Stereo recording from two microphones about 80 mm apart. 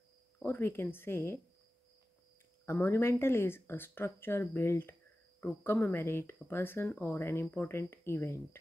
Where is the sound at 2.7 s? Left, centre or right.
Left.